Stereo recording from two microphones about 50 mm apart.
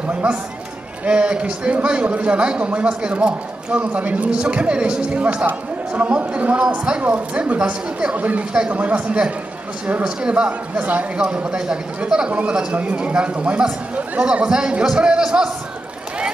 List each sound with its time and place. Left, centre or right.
0.1 s a man's voice: right
8.2 s a man's voice: right
11.1 s a man's voice: centre
12.4 s a man's voice: right